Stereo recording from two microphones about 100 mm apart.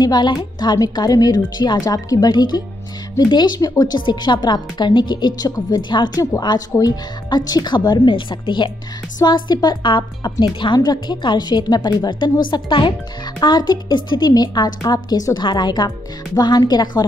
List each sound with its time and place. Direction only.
0.0 s a woman's voice: 45° left (ahead or behind)